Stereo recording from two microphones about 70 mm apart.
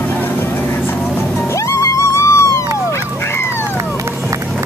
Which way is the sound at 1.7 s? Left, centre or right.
Left.